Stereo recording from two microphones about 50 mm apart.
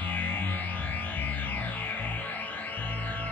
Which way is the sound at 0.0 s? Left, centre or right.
Left.